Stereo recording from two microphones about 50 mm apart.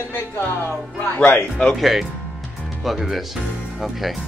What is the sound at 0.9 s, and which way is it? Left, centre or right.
Speech, left.